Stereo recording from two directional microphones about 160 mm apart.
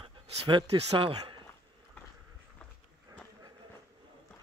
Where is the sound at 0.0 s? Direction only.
30° right (ahead or behind).